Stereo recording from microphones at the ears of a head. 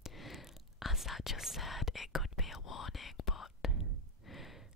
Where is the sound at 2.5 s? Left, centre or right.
Left.